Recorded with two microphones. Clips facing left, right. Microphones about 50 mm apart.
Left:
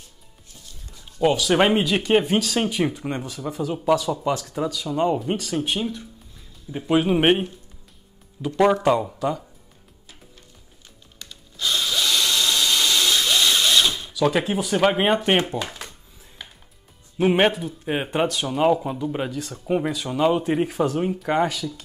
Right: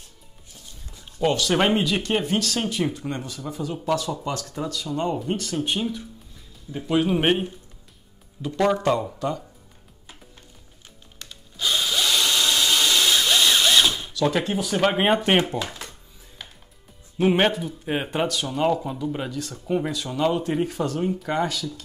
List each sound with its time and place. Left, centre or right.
0.9 s zipper: centre
1.2 s speech: centre
7.0 s speech: centre
8.4 s speech: centre
11.2 s drill: centre
14.1 s speech: centre
17.2 s speech: centre